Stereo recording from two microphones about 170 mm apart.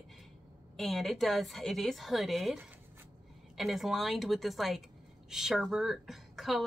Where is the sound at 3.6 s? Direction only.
Centre (ahead or behind).